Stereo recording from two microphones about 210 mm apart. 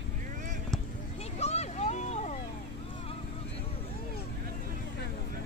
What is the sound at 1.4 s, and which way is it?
Vehicle, 30° left (ahead or behind).